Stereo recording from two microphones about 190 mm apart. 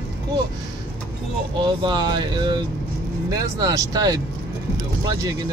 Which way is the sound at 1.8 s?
25° right (ahead or behind).